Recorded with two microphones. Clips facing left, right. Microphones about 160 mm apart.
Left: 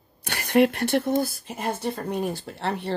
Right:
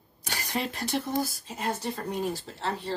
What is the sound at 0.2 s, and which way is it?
Speech, 60° left (ahead or behind).